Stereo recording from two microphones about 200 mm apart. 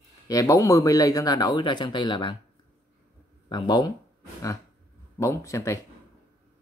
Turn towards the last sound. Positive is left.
turn(degrees=15)  # may be behind; listen again after turning